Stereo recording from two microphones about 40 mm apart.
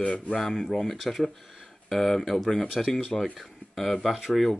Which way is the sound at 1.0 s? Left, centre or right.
Centre.